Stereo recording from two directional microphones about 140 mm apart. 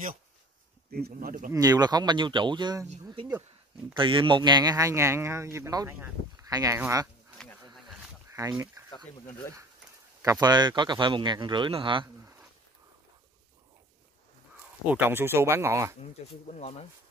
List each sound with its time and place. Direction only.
0.9 s speech: 80° right
1.5 s speech: 25° right (ahead or behind)
8.3 s speech: 20° right (ahead or behind)
10.4 s speech: 30° right (ahead or behind)
14.9 s speech: 15° right (ahead or behind)
16.0 s speech: 55° left (ahead or behind)